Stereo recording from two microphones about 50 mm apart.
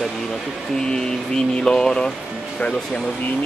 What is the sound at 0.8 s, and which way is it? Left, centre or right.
Music, centre.